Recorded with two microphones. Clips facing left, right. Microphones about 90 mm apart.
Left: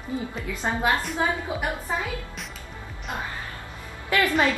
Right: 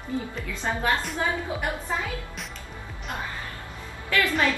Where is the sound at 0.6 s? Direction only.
20° left (ahead or behind).